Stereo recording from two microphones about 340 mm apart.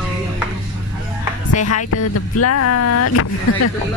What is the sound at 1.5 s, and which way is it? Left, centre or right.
Speech, left.